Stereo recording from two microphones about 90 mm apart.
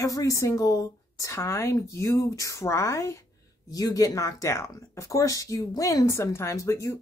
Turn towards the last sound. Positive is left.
turn(degrees=35)  # may be behind; listen again after turning